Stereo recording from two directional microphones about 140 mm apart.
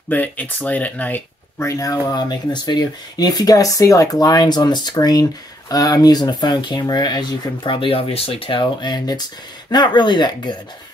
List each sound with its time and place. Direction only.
0.1 s speech: 10° left (ahead or behind); by 10.6 s 30° left (ahead or behind)